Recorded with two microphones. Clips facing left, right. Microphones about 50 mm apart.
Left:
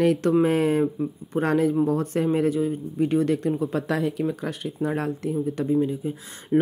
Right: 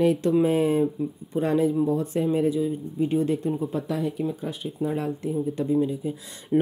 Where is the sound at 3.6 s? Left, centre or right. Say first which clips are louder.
Left 2 dB; left.